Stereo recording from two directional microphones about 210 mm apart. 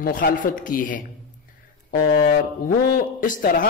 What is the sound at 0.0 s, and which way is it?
Speech, 40° left (ahead or behind).